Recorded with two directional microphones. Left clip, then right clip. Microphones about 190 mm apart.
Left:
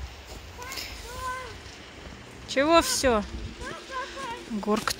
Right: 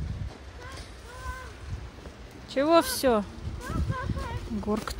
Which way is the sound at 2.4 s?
15° right (ahead or behind).